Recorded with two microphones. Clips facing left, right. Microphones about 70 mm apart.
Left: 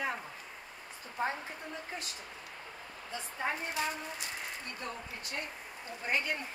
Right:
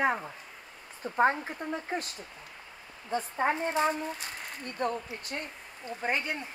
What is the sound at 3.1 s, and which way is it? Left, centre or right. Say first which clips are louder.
Speech: right 8 dB; right.